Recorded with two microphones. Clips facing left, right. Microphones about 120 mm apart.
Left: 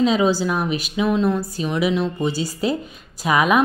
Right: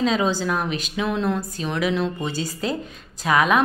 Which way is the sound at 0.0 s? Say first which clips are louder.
Left 4 dB; 5° left (ahead or behind).